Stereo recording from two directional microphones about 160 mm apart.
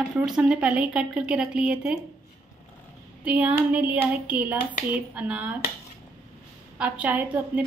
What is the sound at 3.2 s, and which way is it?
Speech, 10° right (ahead or behind).